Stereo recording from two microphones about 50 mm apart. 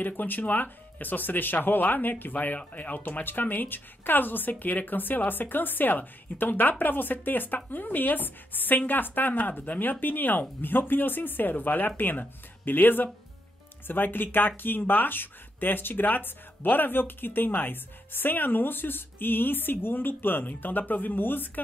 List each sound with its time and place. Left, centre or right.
0.0 s speech: left